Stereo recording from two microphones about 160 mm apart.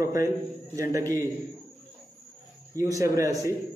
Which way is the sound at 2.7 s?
20° right (ahead or behind).